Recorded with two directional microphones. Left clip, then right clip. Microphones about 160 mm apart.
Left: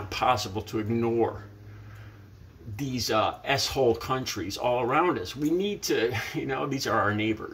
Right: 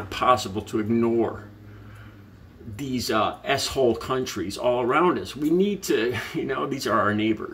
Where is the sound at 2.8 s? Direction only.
15° right (ahead or behind).